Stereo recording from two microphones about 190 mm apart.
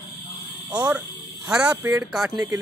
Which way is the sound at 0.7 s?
10° right (ahead or behind).